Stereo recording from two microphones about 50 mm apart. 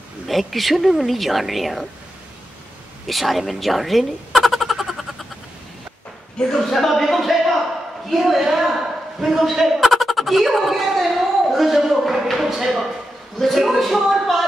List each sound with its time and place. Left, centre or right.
0.3 s a woman's voice: centre
3.1 s speech: centre
6.3 s a woman's voice: centre
9.2 s a sound: centre
13.4 s speech: centre